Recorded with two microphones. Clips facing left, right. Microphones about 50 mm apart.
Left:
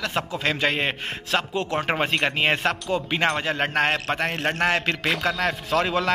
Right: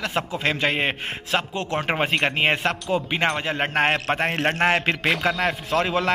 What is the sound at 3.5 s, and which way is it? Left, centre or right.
Speech, centre.